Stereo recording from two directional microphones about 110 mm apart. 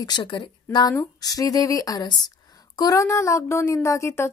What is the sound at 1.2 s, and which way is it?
A woman's voice, 35° left (ahead or behind).